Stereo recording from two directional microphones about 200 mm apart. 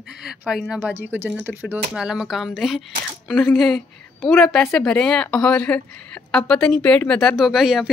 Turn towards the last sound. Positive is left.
turn(degrees=0)  # may be behind; listen again after turning